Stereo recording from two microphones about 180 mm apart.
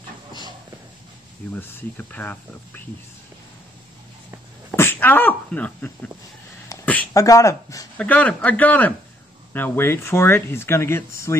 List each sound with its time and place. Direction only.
1.5 s speech: 10° left (ahead or behind)
4.6 s speech: 10° left (ahead or behind)
6.7 s a sound: 10° left (ahead or behind)
7.2 s speech: 20° left (ahead or behind)
8.0 s speech: 10° left (ahead or behind)